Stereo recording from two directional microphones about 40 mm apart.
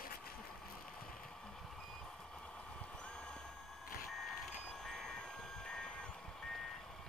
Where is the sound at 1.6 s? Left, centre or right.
Centre.